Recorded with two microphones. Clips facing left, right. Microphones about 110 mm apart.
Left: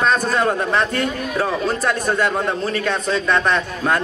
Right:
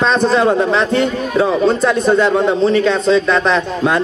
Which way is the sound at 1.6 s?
25° right (ahead or behind).